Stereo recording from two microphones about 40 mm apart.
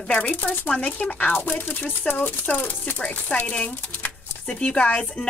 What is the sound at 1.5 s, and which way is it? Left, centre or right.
Chopping, left.